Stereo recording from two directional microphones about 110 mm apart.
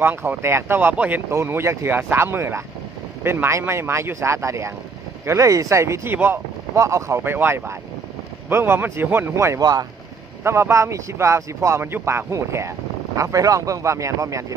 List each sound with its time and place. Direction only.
0.0 s speech: 20° right (ahead or behind); by 9.8 s 35° right (ahead or behind)
10.4 s speech: 25° right (ahead or behind)